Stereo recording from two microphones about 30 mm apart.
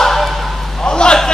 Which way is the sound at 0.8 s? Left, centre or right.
Left.